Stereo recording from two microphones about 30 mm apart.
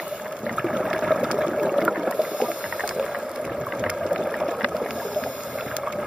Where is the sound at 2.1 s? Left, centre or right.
Right.